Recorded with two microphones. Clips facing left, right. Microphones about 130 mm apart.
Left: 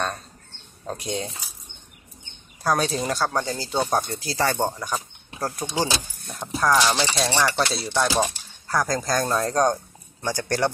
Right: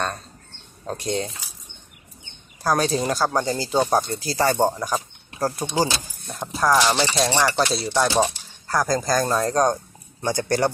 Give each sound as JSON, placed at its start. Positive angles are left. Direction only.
{"t": 0.8, "sound": "speech", "side_deg": 0}
{"t": 2.6, "sound": "speech", "side_deg": 0}
{"t": 3.8, "sound": "speech", "side_deg": 0}
{"t": 6.2, "sound": "speech", "side_deg": 0}
{"t": 10.2, "sound": "speech", "side_deg": -15}